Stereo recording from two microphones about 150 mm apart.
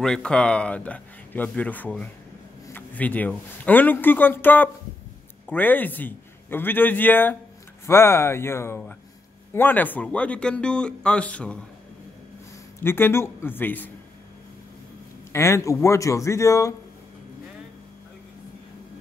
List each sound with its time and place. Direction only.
0.0 s speech: 5° left (ahead or behind)
12.8 s speech: 15° left (ahead or behind)
15.3 s speech: 20° left (ahead or behind)